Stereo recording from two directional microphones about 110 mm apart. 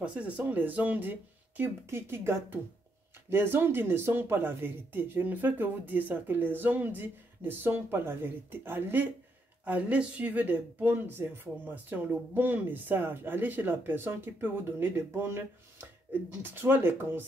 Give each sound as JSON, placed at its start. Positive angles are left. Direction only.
{"t": 0.0, "sound": "speech", "side_deg": -10}